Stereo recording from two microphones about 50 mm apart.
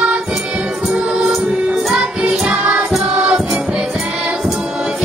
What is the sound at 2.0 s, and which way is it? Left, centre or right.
Music, right.